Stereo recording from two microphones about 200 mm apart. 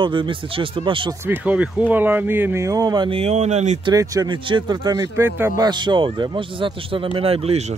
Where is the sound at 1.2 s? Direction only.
10° right (ahead or behind); by 3.8 s 35° right (ahead or behind).